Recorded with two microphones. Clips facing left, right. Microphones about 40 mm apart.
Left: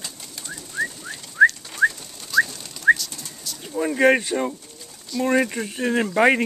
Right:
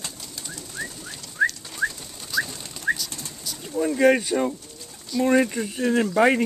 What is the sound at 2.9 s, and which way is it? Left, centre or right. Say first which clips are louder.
Bird: left 8 dB; left.